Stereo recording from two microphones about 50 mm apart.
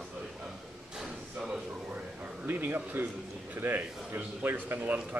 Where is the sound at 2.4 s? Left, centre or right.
Right.